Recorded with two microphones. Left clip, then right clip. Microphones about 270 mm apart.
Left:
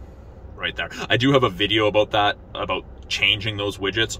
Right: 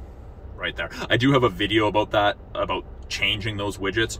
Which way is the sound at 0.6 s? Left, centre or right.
Centre.